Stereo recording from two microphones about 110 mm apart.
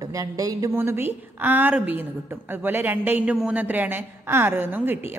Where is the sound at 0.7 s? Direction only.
20° right (ahead or behind).